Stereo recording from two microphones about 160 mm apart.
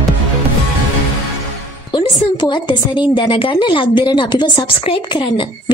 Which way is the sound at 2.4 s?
30° left (ahead or behind).